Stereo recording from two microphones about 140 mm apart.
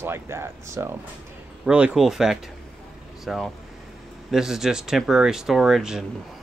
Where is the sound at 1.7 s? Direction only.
10° right (ahead or behind).